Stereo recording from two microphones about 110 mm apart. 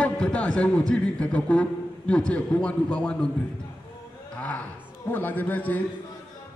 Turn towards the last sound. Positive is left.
turn(degrees=15)  # may be behind; listen again after turning